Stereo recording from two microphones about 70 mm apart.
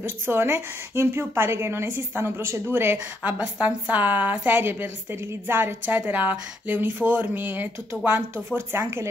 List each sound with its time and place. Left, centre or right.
0.0 s a woman's voice: right
3.3 s a woman's voice: centre; by 9.0 s right